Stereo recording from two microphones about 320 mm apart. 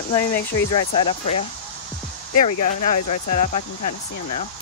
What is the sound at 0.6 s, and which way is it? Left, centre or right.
Speech, centre.